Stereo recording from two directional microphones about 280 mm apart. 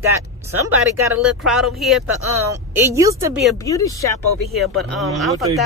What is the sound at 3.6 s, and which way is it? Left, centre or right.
Speech, centre.